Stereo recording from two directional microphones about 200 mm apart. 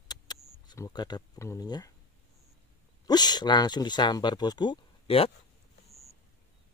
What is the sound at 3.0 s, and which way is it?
Speech, 20° left (ahead or behind).